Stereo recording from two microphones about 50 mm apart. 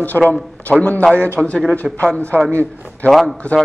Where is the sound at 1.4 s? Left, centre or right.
Centre.